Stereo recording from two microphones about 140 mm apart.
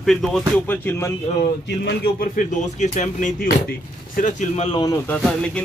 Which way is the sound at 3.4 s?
85° left.